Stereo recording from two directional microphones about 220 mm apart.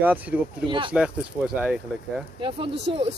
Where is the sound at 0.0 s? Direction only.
10° right (ahead or behind).